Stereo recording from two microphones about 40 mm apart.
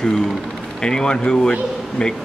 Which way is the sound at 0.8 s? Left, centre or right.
Centre.